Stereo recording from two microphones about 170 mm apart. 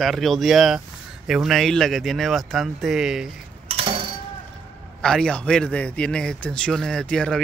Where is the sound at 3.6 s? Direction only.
35° right (ahead or behind).